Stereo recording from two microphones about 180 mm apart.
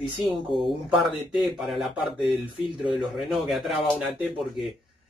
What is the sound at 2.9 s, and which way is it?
Speech, centre (ahead or behind).